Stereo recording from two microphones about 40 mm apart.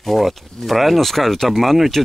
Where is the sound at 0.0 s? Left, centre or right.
Centre.